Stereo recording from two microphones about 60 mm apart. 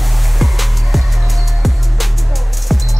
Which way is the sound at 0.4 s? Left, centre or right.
Centre.